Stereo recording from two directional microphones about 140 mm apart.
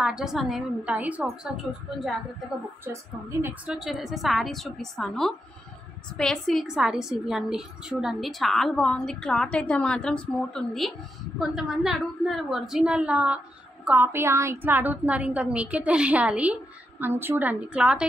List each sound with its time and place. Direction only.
0.0 s a woman's voice: 5° right (ahead or behind)
2.8 s a woman's voice: 20° right (ahead or behind)
3.6 s a woman's voice: centre (ahead or behind)